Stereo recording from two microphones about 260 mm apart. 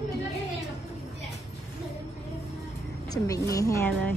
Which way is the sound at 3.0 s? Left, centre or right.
Centre.